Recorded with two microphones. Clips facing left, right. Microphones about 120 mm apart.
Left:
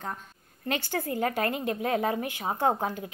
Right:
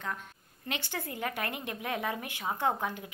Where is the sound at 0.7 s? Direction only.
45° left (ahead or behind).